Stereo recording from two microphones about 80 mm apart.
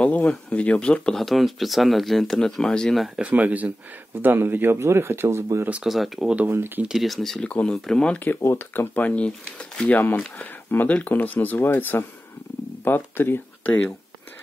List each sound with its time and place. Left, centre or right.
0.0 s speech: centre
3.2 s speech: centre
5.9 s speech: centre
6.2 s speech: centre
6.8 s speech: centre
7.4 s speech: centre
8.2 s speech: left
8.9 s speech: centre